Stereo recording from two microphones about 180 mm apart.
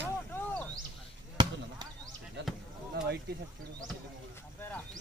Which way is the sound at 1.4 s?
25° right (ahead or behind).